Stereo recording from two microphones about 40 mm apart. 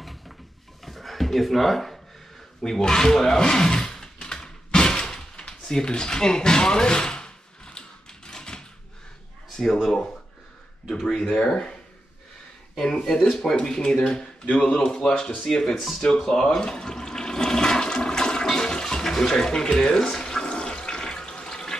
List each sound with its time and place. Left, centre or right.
0.8 s a sound: centre
2.8 s speech: centre
4.7 s a sound: centre
5.5 s door: centre
10.9 s speech: centre
12.7 s speech: centre
14.4 s speech: left
14.8 s speech: centre
16.0 s toilet flush: centre